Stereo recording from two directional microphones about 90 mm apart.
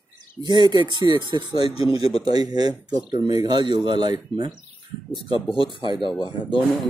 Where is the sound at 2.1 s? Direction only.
45° right (ahead or behind).